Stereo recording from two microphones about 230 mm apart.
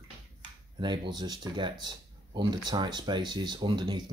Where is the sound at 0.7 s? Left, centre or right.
Centre.